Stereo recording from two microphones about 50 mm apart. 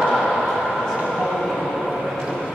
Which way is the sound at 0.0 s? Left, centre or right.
Centre.